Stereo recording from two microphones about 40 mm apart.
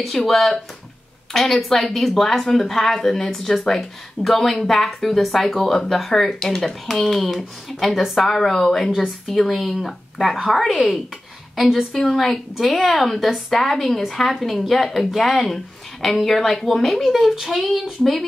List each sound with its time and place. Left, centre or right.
0.2 s speech: centre
8.2 s speech: centre
11.5 s a woman's voice: centre
12.1 s speech: centre